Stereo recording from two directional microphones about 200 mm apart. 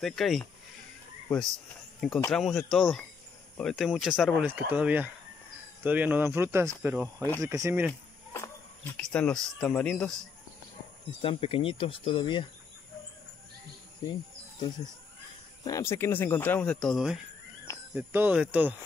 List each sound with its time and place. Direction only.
0.0 s speech: centre (ahead or behind)
2.0 s speech: centre (ahead or behind)
7.2 s speech: 10° left (ahead or behind)
7.4 s speech: 15° right (ahead or behind)
8.3 s speech: 10° left (ahead or behind)
11.1 s speech: 25° left (ahead or behind)
15.6 s speech: 15° left (ahead or behind); by 18.8 s 5° right (ahead or behind)